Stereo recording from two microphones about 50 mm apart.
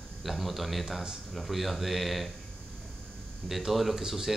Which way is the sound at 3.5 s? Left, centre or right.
Centre.